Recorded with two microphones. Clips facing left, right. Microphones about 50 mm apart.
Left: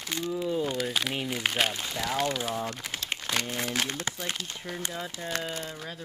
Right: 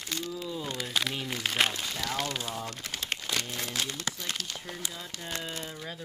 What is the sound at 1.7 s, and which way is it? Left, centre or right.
Speech, centre.